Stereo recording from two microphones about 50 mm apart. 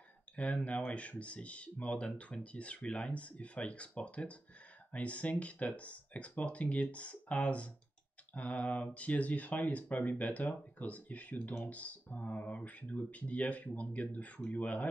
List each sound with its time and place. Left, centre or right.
0.7 s speech: left